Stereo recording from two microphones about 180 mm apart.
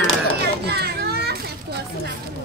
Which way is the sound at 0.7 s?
60° right (ahead or behind).